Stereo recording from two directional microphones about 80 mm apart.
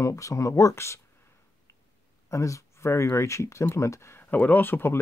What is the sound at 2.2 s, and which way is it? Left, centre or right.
Speech, left.